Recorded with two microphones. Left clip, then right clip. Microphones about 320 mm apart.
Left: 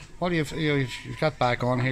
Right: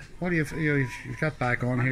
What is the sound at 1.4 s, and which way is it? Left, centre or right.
Speech, left.